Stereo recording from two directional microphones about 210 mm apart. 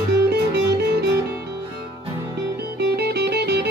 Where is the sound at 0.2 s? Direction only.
50° right (ahead or behind).